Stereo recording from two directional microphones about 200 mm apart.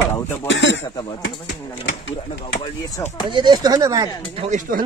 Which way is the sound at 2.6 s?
20° left (ahead or behind).